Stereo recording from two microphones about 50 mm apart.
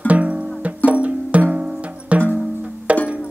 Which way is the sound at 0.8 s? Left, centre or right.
Right.